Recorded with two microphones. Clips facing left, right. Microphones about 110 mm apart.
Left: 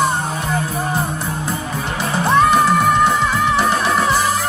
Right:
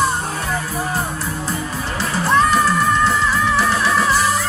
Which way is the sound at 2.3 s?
20° left (ahead or behind).